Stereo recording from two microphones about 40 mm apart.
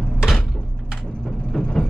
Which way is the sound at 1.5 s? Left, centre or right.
Left.